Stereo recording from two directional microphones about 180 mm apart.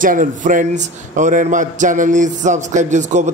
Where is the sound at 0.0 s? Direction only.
50° right (ahead or behind).